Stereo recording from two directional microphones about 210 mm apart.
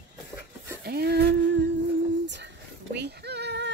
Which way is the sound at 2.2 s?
55° right (ahead or behind).